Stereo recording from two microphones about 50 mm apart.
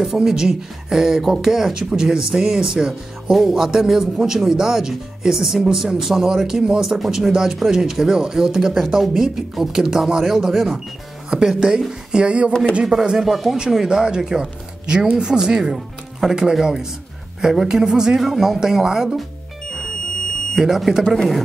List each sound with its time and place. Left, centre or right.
0.0 s speech: centre; by 12.5 s right
12.8 s speech: centre
20.5 s speech: centre